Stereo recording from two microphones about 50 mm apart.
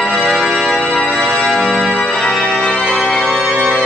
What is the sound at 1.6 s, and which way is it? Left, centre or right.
Organ, centre.